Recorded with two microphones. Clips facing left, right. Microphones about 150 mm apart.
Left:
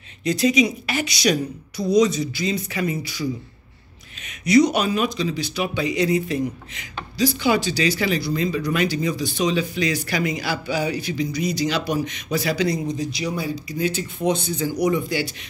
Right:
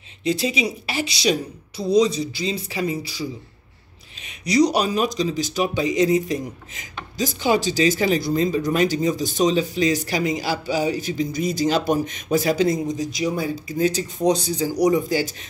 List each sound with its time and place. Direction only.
0.2 s a woman's voice: 30° right (ahead or behind)
4.3 s speech: 35° right (ahead or behind)